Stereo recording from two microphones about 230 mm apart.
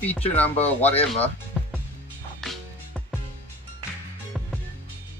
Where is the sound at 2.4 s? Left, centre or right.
Centre.